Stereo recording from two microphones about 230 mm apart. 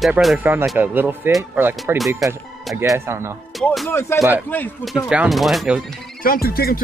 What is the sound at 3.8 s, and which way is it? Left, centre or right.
Speech, centre.